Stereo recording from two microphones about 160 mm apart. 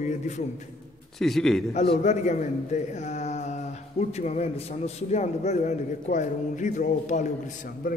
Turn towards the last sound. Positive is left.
turn(degrees=55)  # may be behind; listen again after turning